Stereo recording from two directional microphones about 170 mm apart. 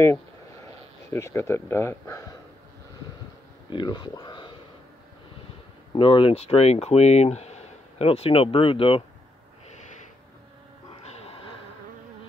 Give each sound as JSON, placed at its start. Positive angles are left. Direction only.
{"t": 1.1, "sound": "speech", "side_deg": 15}
{"t": 3.7, "sound": "speech", "side_deg": 25}
{"t": 5.9, "sound": "speech", "side_deg": 35}
{"t": 10.9, "sound": "music", "side_deg": 35}